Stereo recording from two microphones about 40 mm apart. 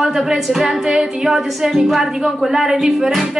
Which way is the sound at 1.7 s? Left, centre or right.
Centre.